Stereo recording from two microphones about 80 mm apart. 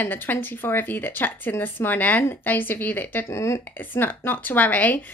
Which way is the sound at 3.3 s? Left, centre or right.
Left.